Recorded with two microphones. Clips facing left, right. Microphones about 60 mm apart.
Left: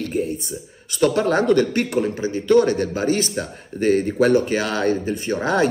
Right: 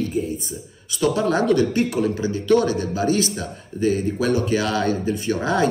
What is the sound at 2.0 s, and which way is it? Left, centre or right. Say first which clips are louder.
A man's voice: left 1 dB; left.